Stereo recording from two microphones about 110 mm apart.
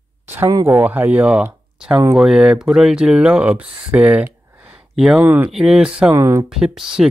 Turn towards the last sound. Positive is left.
turn(degrees=-5)  # may be behind; listen again after turning